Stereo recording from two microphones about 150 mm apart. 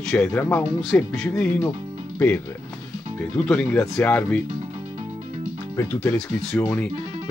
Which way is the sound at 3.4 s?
5° left (ahead or behind).